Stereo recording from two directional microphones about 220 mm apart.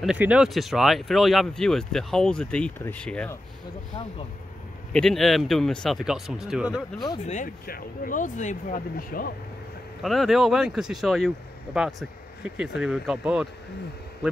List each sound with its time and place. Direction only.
0.0 s speech: 5° right (ahead or behind)
4.9 s speech: centre (ahead or behind)
7.2 s speech: 35° left (ahead or behind)
10.0 s speech: centre (ahead or behind)